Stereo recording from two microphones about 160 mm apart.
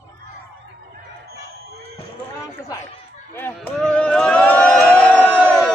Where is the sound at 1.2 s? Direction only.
85° right.